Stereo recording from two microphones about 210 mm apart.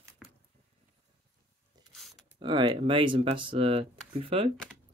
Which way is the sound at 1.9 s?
Centre (ahead or behind).